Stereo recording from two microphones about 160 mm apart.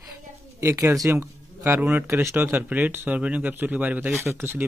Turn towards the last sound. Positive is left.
turn(degrees=-15)  # may be behind; listen again after turning